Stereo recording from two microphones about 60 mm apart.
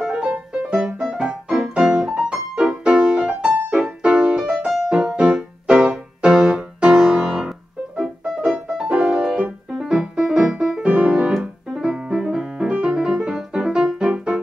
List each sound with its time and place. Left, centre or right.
0.0 s music: centre
9.8 s piano: centre
11.3 s keyboard: centre